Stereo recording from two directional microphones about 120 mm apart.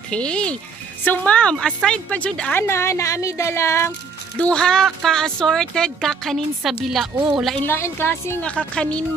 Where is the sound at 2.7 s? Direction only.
25° left (ahead or behind).